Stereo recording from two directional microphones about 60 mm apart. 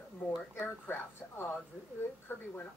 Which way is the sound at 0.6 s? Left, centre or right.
Left.